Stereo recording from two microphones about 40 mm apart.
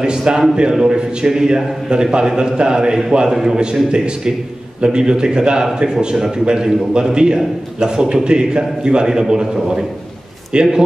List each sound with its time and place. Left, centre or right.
0.0 s a man's voice: centre
4.8 s a man's voice: right